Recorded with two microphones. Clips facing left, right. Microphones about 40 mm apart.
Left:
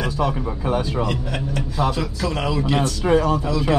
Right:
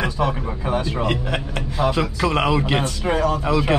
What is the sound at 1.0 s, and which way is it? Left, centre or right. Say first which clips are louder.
A man's voice: right 2 dB; right.